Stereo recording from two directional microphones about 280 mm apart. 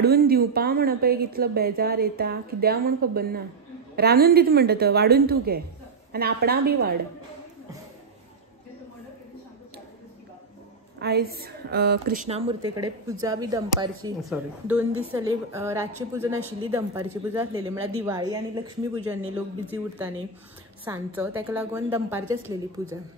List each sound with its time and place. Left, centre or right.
0.0 s speech: right
11.0 s a woman's voice: right; by 19.8 s centre
20.8 s speech: centre